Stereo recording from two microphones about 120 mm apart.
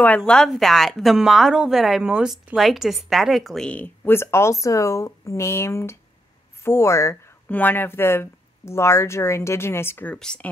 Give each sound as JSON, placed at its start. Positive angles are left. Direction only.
{"t": 0.2, "sound": "a woman's voice", "side_deg": 5}
{"t": 10.1, "sound": "speech", "side_deg": 5}